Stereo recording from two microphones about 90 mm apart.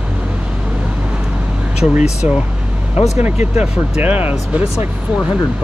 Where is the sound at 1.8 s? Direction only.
10° right (ahead or behind).